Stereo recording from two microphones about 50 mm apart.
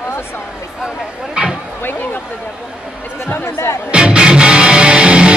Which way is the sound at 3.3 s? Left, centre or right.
Left.